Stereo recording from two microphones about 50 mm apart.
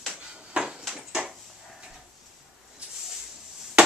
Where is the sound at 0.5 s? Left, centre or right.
Centre.